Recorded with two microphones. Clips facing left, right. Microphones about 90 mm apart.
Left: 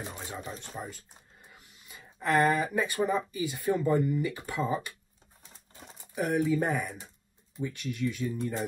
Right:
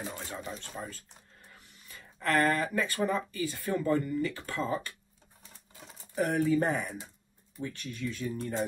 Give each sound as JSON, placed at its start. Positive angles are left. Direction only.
{"t": 0.0, "sound": "speech", "side_deg": 15}
{"t": 6.1, "sound": "speech", "side_deg": 5}
{"t": 7.5, "sound": "speech", "side_deg": 15}